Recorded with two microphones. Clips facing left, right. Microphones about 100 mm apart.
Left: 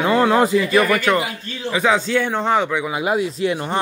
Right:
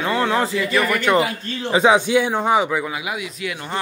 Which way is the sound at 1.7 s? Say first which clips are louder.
Right 3 dB; 15° right (ahead or behind).